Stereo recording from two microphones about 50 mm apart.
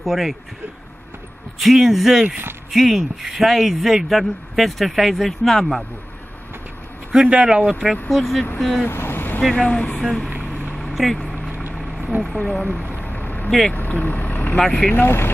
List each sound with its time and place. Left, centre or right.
0.0 s a man's voice: centre
1.6 s a man's voice: centre
7.1 s speech: centre
8.1 s a man's voice: centre
8.8 s vehicle: left
9.4 s speech: centre
9.7 s speech: left
10.4 s vehicle: left
10.8 s vehicle: centre
12.2 s speech: centre
12.6 s vehicle: left
13.7 s speech: left
14.6 s speech: centre
14.9 s speech: left